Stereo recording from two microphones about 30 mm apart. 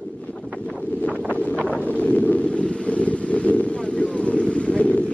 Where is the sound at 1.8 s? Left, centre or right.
Left.